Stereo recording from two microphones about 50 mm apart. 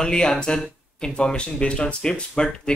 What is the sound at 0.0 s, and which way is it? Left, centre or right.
A man's voice, centre.